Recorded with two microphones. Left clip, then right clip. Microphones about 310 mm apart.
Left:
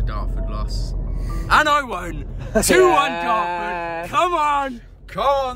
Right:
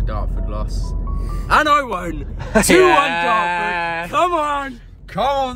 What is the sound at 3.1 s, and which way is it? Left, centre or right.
Speech, right.